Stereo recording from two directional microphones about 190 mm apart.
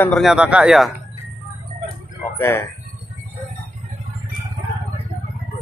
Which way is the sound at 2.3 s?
15° left (ahead or behind).